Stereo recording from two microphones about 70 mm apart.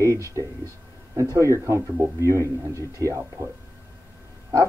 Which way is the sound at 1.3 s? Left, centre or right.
Right.